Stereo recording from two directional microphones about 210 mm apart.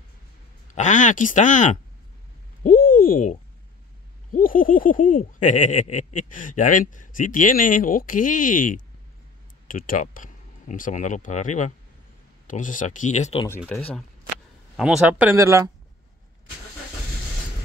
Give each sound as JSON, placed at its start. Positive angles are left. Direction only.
{"t": 0.7, "sound": "speech", "side_deg": 35}
{"t": 2.6, "sound": "a sound", "side_deg": 40}
{"t": 4.3, "sound": "speech", "side_deg": 40}
{"t": 13.7, "sound": "speech", "side_deg": 5}